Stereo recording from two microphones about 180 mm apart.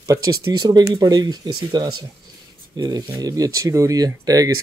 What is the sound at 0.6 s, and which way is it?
Speech, 25° right (ahead or behind).